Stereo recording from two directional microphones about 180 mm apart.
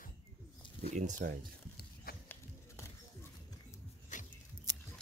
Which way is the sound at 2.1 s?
60° left (ahead or behind).